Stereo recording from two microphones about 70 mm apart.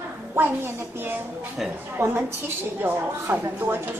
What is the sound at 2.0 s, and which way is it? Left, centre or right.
A woman's voice, right.